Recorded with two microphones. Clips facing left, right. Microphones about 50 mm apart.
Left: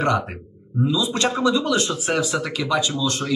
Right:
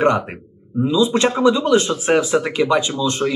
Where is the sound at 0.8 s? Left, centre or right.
Right.